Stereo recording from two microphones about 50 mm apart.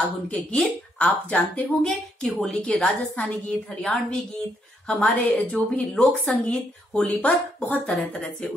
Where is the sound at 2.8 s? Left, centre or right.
Left.